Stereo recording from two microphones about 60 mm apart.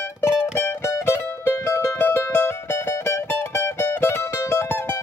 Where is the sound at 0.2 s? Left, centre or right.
Left.